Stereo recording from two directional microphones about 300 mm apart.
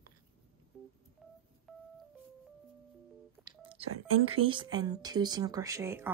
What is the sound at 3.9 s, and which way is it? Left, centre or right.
Speech, right.